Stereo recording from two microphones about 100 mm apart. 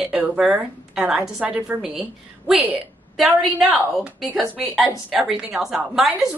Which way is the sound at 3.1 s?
Centre (ahead or behind).